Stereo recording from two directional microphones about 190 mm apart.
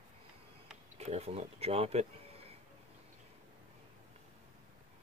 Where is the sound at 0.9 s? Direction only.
35° right (ahead or behind).